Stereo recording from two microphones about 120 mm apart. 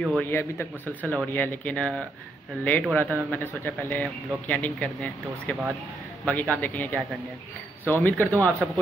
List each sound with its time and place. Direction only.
0.2 s a man's voice: 20° left (ahead or behind)